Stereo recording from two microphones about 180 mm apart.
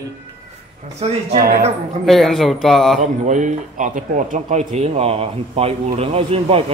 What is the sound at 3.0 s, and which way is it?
A man's voice, 45° right (ahead or behind).